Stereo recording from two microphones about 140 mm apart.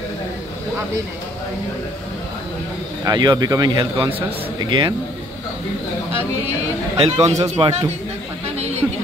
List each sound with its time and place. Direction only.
3.1 s speech: 25° right (ahead or behind)
7.0 s a man's voice: 45° right (ahead or behind)
8.5 s a sound: 50° right (ahead or behind)